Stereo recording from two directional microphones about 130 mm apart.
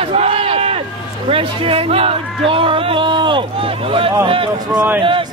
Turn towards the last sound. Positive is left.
turn(degrees=-40)  # may be behind; listen again after turning